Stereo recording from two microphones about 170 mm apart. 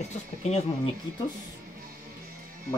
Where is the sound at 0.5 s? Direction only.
40° left (ahead or behind).